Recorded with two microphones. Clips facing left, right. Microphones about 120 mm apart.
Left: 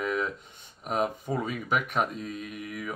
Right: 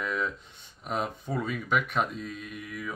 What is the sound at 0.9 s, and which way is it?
Speech, 10° left (ahead or behind).